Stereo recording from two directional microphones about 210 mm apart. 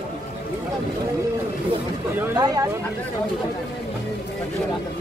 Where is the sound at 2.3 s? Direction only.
20° right (ahead or behind).